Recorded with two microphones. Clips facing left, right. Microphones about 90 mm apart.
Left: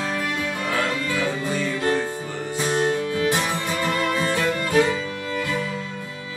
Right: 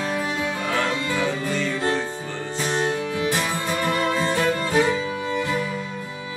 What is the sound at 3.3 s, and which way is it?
Music, 20° left (ahead or behind).